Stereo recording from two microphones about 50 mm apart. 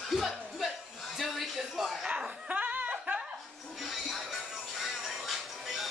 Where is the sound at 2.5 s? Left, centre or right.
Right.